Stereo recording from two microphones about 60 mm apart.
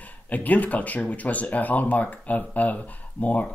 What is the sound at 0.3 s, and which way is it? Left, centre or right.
Speech, left.